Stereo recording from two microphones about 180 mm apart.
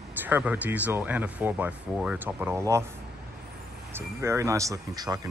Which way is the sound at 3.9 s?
15° right (ahead or behind).